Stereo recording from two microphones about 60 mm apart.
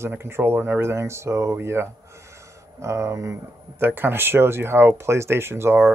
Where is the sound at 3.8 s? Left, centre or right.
Right.